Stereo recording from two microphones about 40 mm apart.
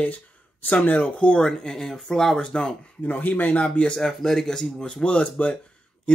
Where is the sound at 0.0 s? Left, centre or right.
Left.